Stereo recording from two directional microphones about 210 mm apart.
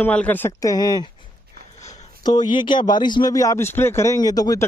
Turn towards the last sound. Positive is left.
turn(degrees=20)  # may be behind; listen again after turning